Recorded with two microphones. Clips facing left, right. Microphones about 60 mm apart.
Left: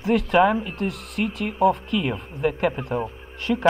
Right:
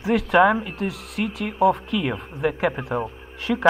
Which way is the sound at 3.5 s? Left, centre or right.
Right.